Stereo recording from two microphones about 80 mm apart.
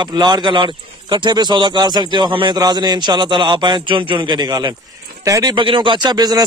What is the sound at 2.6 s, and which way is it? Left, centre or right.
Speech, right.